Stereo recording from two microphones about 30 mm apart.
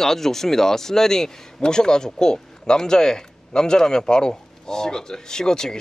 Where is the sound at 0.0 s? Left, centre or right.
Centre.